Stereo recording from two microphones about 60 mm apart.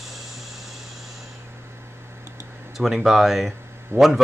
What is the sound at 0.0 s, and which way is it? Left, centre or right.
Vehicle, centre.